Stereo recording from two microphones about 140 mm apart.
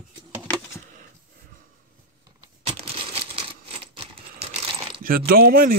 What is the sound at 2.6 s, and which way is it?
Typewriter, 45° right (ahead or behind).